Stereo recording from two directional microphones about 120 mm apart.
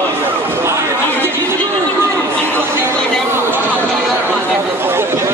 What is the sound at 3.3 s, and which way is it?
Chatter, 20° right (ahead or behind).